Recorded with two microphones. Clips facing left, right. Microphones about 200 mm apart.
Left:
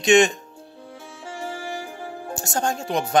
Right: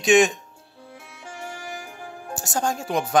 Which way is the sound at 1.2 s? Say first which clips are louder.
Left 5 dB; 30° left (ahead or behind).